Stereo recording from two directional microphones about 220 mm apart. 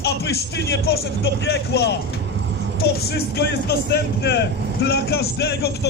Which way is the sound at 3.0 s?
45° left (ahead or behind).